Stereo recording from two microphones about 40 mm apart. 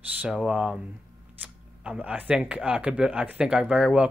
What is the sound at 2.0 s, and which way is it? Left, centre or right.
Speech, right.